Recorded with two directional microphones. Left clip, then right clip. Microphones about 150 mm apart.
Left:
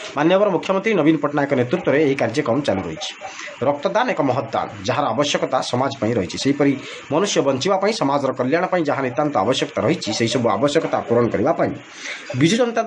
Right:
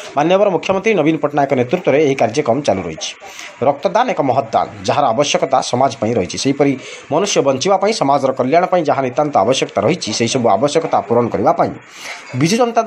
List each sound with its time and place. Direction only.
0.1 s a man's voice: 15° right (ahead or behind)